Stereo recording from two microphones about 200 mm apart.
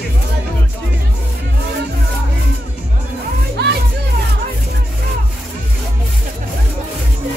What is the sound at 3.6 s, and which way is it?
Children playing, 55° right (ahead or behind).